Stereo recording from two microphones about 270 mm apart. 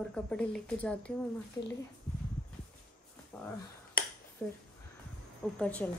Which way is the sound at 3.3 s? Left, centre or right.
Centre.